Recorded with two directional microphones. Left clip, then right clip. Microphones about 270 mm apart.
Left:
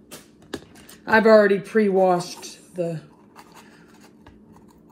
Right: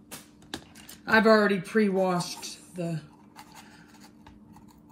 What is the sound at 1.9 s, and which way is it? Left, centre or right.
Speech, centre.